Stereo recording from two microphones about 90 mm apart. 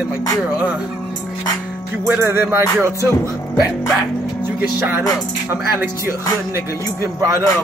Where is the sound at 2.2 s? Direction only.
25° right (ahead or behind).